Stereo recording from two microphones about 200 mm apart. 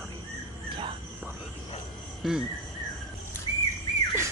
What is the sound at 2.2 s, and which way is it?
Cricket, centre (ahead or behind).